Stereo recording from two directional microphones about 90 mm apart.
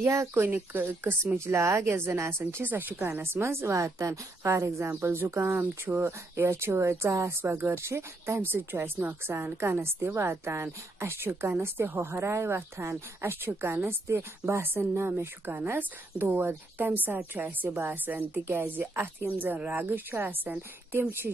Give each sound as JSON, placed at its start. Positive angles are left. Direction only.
{"t": 0.0, "sound": "speech", "side_deg": -30}